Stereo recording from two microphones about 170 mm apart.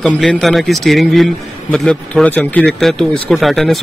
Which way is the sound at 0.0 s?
5° left (ahead or behind).